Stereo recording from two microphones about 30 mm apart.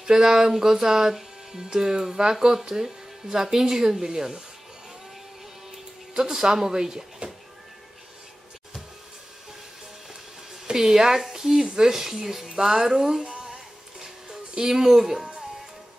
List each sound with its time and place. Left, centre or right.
0.0 s speech: right
6.1 s speech: right
10.5 s speech: centre
13.5 s music: centre